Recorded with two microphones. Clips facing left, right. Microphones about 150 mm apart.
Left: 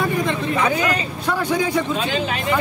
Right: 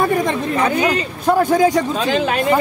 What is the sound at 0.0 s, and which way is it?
Speech, 50° right (ahead or behind).